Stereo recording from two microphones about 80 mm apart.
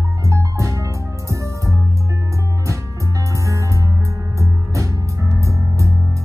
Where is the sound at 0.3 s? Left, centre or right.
Right.